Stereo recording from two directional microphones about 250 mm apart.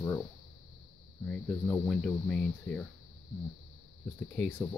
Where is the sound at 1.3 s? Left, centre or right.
Centre.